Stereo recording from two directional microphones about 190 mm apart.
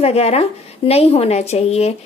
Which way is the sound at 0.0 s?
35° left (ahead or behind).